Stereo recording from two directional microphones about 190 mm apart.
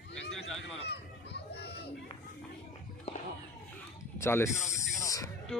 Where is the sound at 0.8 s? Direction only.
60° left (ahead or behind).